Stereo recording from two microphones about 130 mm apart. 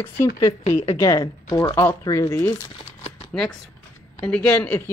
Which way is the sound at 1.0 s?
25° left (ahead or behind).